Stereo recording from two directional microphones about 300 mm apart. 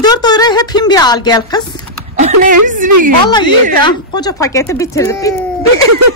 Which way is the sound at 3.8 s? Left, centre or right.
Centre.